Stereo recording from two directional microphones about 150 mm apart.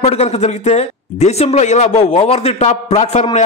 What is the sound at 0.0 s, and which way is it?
Speech, 45° left (ahead or behind).